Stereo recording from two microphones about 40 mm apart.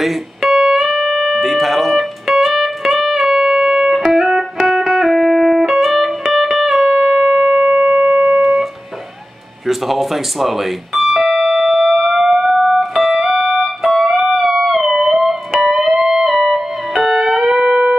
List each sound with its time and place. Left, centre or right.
0.0 s music: centre
9.7 s speech: centre
11.3 s music: centre
13.3 s music: centre
13.6 s music: centre
17.5 s steel guitar: centre